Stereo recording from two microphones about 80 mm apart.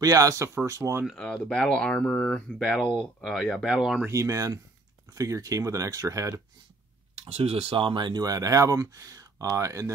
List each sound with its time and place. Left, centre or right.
0.0 s speech: right
1.1 s speech: centre
2.3 s speech: centre
4.1 s speech: right
7.7 s speech: right
8.3 s speech: right